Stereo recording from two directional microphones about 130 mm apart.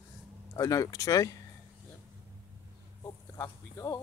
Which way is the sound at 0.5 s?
25° left (ahead or behind).